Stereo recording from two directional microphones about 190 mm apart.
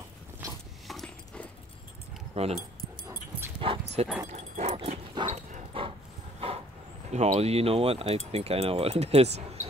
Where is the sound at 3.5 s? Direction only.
25° right (ahead or behind).